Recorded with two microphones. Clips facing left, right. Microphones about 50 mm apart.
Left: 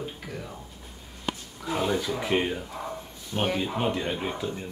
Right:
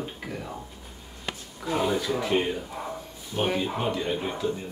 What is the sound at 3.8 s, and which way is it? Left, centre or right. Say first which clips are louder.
Speech: even; centre.